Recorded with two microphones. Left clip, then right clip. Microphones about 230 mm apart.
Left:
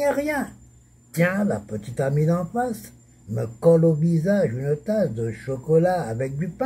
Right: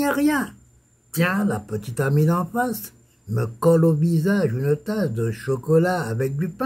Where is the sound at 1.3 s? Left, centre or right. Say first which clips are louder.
Right 1 dB; right.